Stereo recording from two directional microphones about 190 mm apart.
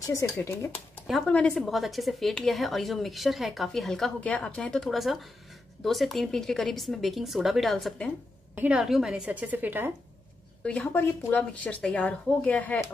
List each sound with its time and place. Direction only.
0.0 s speech: 15° left (ahead or behind)
1.0 s a woman's voice: centre (ahead or behind)
10.6 s speech: 5° left (ahead or behind)